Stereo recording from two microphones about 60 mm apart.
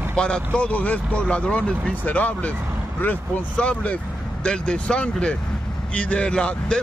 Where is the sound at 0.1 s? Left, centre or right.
Centre.